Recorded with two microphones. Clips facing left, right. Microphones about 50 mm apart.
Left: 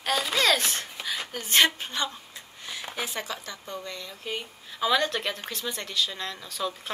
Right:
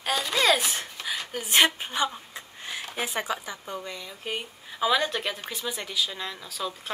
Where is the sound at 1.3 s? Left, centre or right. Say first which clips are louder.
Right 1 dB; centre.